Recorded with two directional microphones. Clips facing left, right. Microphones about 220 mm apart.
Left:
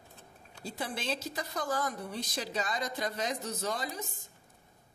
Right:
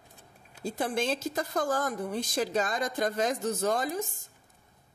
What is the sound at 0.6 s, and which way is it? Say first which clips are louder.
A woman's voice: right 7 dB; 50° right (ahead or behind).